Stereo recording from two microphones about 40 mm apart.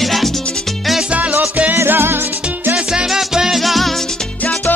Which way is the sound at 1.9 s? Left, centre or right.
Right.